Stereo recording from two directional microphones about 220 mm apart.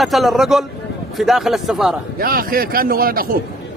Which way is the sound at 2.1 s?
40° right (ahead or behind).